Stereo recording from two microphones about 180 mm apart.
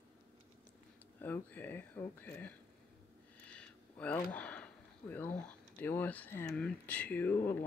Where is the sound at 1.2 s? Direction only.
10° left (ahead or behind).